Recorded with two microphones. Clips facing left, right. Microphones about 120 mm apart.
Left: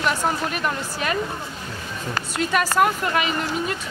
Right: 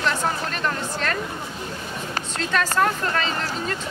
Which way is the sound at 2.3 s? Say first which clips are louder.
Left 3 dB; 10° left (ahead or behind).